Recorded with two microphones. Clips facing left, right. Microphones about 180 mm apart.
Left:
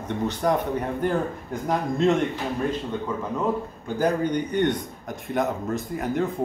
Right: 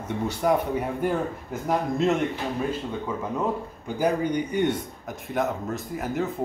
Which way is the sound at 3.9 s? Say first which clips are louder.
Left 1 dB; 10° right (ahead or behind).